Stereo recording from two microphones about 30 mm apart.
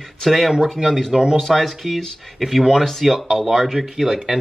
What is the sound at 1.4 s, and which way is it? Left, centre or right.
Speech, centre.